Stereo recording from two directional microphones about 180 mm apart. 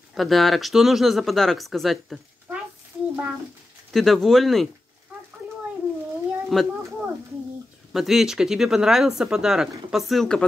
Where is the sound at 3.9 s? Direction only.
Centre (ahead or behind).